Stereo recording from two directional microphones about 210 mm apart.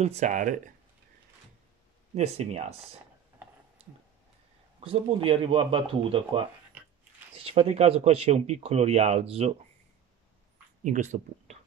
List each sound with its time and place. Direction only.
0.0 s speech: 30° right (ahead or behind)
2.1 s speech: 30° right (ahead or behind)
3.8 s a sound: 30° right (ahead or behind)
4.7 s speech: 25° right (ahead or behind)
10.8 s speech: 35° right (ahead or behind)